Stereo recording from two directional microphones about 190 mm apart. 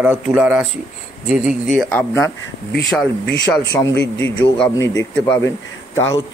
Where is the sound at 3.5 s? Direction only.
15° left (ahead or behind).